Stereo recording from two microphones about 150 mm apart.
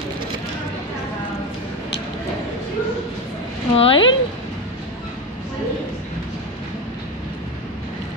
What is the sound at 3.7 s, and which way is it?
Speech, 35° left (ahead or behind).